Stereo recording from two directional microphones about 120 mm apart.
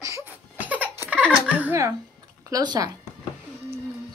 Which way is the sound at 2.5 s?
35° right (ahead or behind).